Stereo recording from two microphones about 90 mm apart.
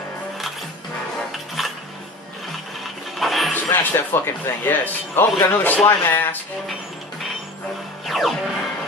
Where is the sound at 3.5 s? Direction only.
20° left (ahead or behind).